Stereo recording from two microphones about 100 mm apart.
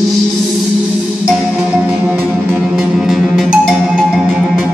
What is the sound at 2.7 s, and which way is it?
Music, 5° right (ahead or behind).